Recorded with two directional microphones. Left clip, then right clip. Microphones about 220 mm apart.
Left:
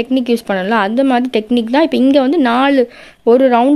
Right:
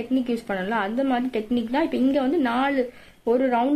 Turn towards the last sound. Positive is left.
turn(degrees=45)  # may be behind; listen again after turning